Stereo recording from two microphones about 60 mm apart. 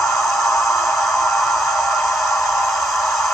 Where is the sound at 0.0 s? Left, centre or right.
Centre.